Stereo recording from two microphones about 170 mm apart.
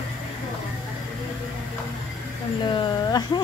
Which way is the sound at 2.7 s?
25° left (ahead or behind).